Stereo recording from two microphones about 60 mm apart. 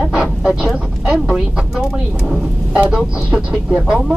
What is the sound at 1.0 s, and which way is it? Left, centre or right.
Speech, centre.